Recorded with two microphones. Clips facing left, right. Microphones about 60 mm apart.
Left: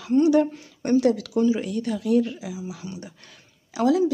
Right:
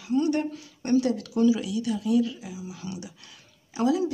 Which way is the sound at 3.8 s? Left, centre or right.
Left.